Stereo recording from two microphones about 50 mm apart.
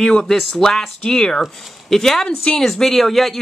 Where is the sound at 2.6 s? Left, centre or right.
Centre.